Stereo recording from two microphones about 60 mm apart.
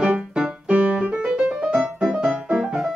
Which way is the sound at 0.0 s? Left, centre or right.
Right.